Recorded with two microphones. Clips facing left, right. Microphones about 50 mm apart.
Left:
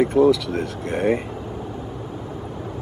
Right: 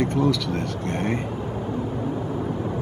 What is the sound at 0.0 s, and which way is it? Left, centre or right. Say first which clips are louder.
Speech: left 6 dB; centre.